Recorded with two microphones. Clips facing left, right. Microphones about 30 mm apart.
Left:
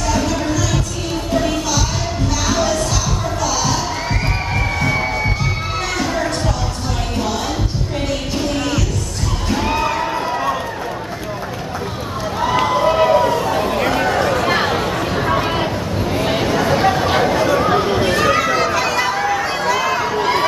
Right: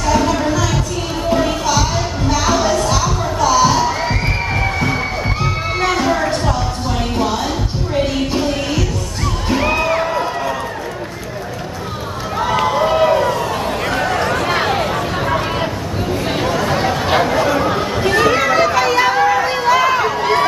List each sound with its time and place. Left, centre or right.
0.1 s music: centre
2.4 s children shouting: centre
4.7 s crowd: centre
9.7 s music: centre
12.4 s a sound: centre
16.2 s chatter: centre